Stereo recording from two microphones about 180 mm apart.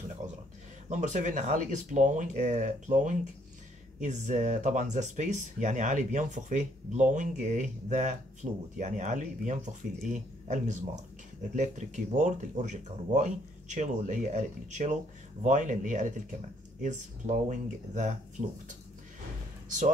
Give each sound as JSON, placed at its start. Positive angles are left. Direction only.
{"t": 0.8, "sound": "speech", "side_deg": -40}